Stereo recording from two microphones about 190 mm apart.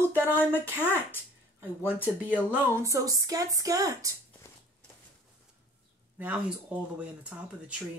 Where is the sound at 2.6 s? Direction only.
15° right (ahead or behind).